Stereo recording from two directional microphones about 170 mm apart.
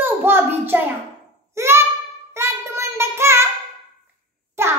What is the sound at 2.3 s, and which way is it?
Child singing, 15° right (ahead or behind).